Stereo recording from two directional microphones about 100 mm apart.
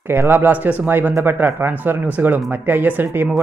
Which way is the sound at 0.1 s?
20° right (ahead or behind).